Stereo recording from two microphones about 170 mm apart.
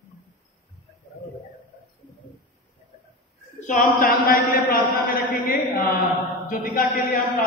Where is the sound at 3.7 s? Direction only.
55° left (ahead or behind).